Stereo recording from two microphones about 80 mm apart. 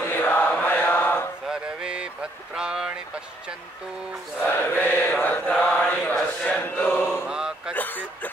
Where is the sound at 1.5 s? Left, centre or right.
Centre.